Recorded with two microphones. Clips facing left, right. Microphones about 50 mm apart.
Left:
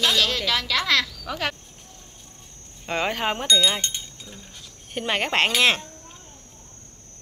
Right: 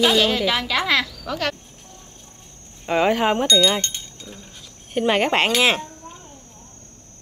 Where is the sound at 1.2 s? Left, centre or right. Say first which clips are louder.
Right 3 dB; centre.